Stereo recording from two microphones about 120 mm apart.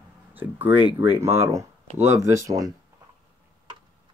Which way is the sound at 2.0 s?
25° right (ahead or behind).